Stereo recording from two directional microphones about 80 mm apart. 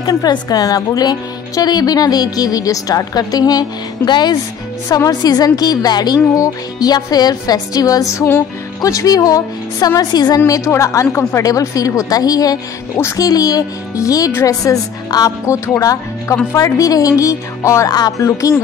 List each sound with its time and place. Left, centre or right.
0.0 s speech: left
4.8 s speech: left
12.9 s speech: left
13.2 s speech: left
15.4 s speech: left